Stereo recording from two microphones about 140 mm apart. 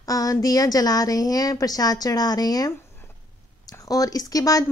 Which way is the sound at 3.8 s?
25° left (ahead or behind).